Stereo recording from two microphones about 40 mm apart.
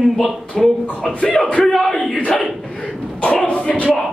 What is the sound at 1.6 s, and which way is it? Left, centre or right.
Yell, centre.